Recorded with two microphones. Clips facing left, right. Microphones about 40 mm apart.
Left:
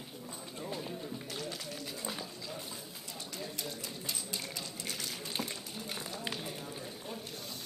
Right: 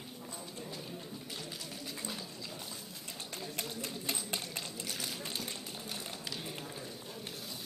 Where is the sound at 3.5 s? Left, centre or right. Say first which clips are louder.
Right 1 dB; right.